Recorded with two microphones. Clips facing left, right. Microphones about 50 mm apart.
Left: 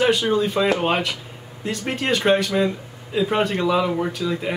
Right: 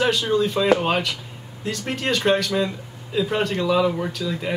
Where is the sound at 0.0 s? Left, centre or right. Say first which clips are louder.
Left 1 dB; centre.